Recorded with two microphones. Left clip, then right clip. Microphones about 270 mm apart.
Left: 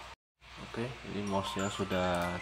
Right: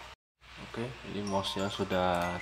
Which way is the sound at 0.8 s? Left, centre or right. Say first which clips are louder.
Even; centre.